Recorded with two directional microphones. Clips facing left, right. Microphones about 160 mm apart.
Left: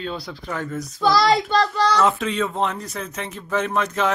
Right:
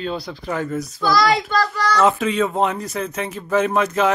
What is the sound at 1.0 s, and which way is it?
Speech, 25° left (ahead or behind).